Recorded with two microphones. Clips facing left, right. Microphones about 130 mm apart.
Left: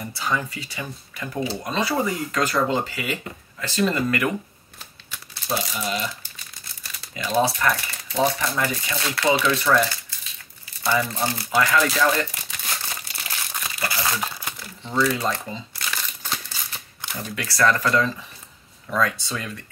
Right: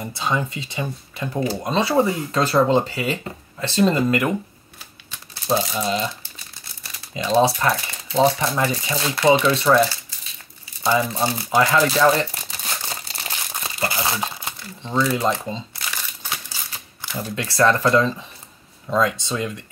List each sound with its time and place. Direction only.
0.0 s speech: 20° right (ahead or behind)
5.5 s speech: 25° right (ahead or behind)
11.7 s speech: 30° right (ahead or behind)
12.8 s crumpling: 25° right (ahead or behind)
17.1 s speech: 25° right (ahead or behind)